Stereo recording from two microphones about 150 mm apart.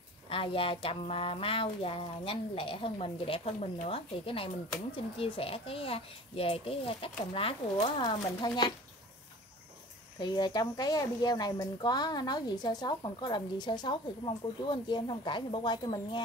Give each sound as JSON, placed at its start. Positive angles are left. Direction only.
{"t": 0.3, "sound": "speech", "side_deg": 35}
{"t": 8.0, "sound": "speech", "side_deg": 30}
{"t": 10.1, "sound": "speech", "side_deg": 30}